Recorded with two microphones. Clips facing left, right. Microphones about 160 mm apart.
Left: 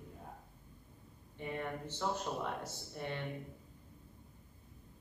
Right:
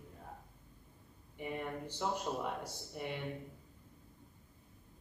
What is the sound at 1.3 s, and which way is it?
A man's voice, 10° right (ahead or behind).